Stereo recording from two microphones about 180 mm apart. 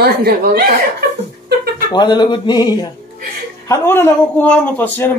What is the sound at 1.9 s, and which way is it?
Speech, 25° left (ahead or behind).